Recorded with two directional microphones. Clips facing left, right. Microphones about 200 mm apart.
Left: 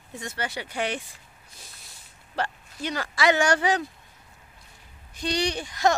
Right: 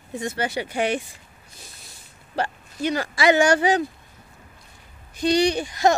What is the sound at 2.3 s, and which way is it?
Speech, 10° right (ahead or behind).